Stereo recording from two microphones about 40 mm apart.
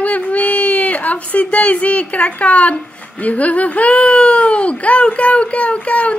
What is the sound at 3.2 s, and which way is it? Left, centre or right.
Speech, left.